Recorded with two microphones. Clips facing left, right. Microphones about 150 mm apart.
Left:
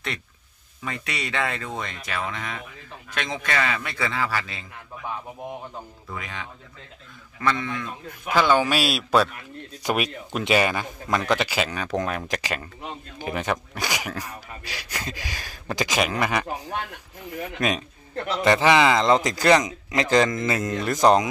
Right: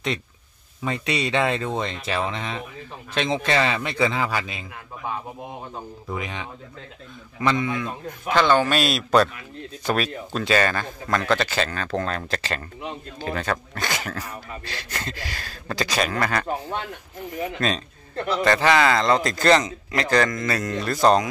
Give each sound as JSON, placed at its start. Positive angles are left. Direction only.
{"t": 0.8, "sound": "speech", "side_deg": -25}
{"t": 6.0, "sound": "a man's voice", "side_deg": -20}
{"t": 8.3, "sound": "speech", "side_deg": 10}
{"t": 9.8, "sound": "speech", "side_deg": 15}
{"t": 17.6, "sound": "speech", "side_deg": 15}